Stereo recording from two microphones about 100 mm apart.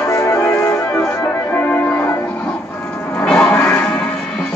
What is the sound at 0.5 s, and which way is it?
Music, 10° left (ahead or behind).